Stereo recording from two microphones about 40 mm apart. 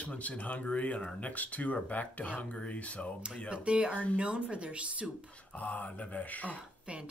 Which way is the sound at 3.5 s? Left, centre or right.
Right.